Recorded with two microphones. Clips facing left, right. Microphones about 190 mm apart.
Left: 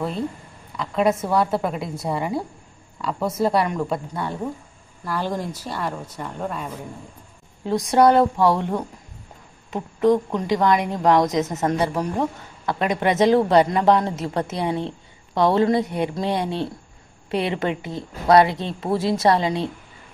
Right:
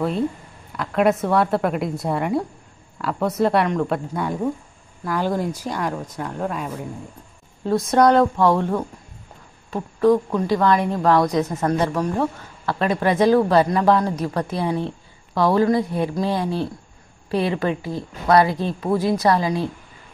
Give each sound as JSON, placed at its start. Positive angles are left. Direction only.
{"t": 0.7, "sound": "a woman's voice", "side_deg": 0}
{"t": 7.6, "sound": "speech", "side_deg": 15}